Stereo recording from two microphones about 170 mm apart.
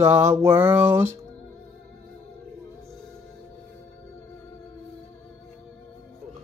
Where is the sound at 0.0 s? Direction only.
15° right (ahead or behind).